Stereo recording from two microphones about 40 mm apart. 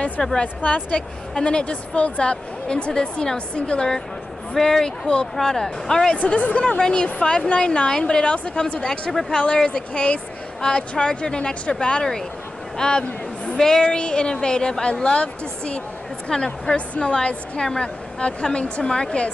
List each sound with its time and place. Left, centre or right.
0.2 s speech: centre
0.6 s a woman's voice: left
4.6 s speech: centre
6.1 s a woman's voice: left; by 13.8 s centre
13.8 s a woman's voice: left
17.6 s a woman's voice: centre